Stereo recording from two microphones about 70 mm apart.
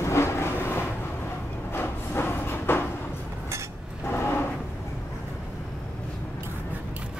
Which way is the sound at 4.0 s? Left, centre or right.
Left.